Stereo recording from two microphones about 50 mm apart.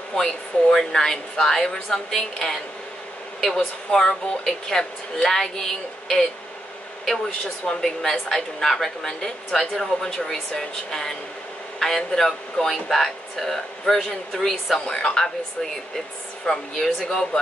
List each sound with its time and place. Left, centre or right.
0.1 s speech: centre
7.8 s speech: centre
15.0 s speech: centre
16.4 s speech: centre
17.0 s speech: centre